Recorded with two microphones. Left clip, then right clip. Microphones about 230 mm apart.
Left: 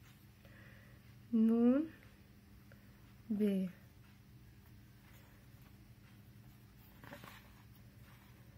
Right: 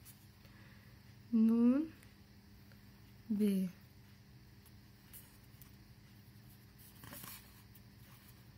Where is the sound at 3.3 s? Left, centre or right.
Right.